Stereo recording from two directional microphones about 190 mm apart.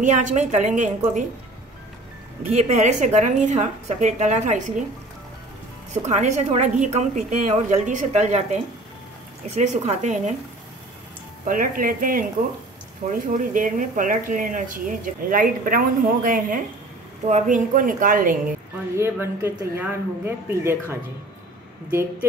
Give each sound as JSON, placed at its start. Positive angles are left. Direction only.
{"t": 0.0, "sound": "a woman's voice", "side_deg": -40}
{"t": 2.7, "sound": "a woman's voice", "side_deg": -35}
{"t": 6.0, "sound": "a woman's voice", "side_deg": -35}
{"t": 11.4, "sound": "speech", "side_deg": -45}
{"t": 18.9, "sound": "speech", "side_deg": -15}